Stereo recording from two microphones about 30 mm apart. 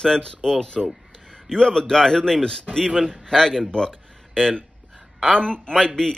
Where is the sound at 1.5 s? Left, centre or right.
Left.